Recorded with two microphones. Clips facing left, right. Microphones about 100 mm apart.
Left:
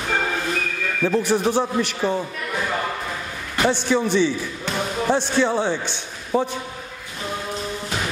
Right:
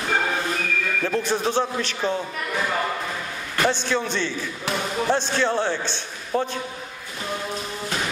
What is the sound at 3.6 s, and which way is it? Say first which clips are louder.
A man's voice: left 4 dB; 15° left (ahead or behind).